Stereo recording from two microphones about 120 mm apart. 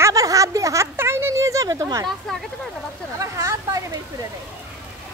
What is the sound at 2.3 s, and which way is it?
Speech, 5° left (ahead or behind).